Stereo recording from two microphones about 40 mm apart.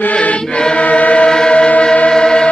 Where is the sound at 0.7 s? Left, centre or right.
Left.